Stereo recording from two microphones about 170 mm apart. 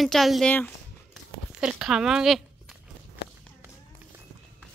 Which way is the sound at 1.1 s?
5° right (ahead or behind).